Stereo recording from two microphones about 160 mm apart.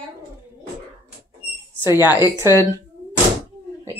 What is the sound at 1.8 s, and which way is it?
Speech, 15° right (ahead or behind).